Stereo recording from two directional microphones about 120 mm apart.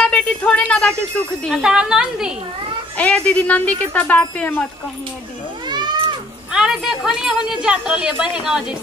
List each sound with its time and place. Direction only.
0.0 s a sound: 10° left (ahead or behind)
1.5 s a woman's voice: 5° right (ahead or behind)
3.0 s speech: 10° left (ahead or behind)
5.7 s cat: 40° right (ahead or behind)
6.5 s speech: 5° right (ahead or behind)